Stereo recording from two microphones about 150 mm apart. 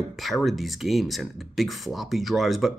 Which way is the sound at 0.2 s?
Centre (ahead or behind).